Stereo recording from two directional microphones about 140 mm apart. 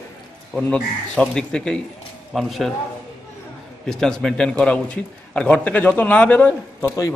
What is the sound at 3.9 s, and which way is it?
A man's voice, 5° left (ahead or behind).